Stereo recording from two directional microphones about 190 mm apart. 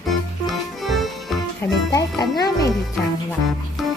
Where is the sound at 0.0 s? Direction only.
Centre (ahead or behind).